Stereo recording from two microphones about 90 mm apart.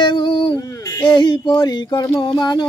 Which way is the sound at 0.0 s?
55° left (ahead or behind).